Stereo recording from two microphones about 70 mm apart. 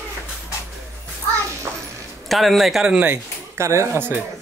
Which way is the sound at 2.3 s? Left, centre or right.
Centre.